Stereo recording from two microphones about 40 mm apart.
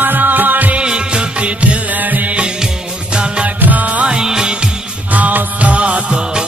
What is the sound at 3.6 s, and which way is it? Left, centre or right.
Music, right.